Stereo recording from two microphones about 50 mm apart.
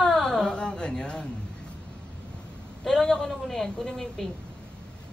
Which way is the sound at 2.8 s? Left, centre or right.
Centre.